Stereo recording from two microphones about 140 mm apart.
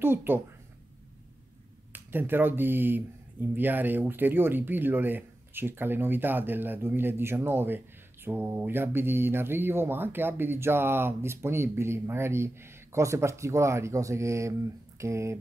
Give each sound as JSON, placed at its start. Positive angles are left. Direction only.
{"t": 0.0, "sound": "speech", "side_deg": -15}
{"t": 1.9, "sound": "speech", "side_deg": -15}